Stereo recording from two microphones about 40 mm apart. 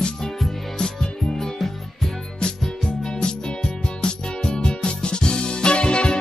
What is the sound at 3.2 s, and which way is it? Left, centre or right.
Music, left.